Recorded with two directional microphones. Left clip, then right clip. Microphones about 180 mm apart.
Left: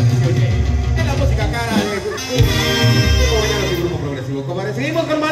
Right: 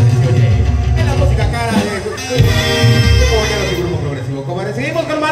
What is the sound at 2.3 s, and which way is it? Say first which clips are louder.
Music: right 3 dB; 40° right (ahead or behind).